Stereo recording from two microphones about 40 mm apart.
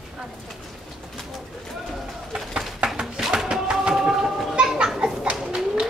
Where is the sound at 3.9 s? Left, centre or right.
Centre.